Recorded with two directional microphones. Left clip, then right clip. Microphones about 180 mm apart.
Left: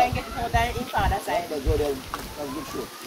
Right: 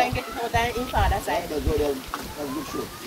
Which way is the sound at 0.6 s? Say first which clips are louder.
Right 1 dB; 10° right (ahead or behind).